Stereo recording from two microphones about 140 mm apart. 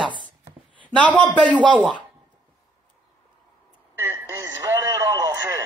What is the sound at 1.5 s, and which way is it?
Speech, 35° right (ahead or behind).